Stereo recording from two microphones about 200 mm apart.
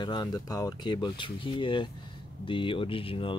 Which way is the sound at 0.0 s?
20° left (ahead or behind).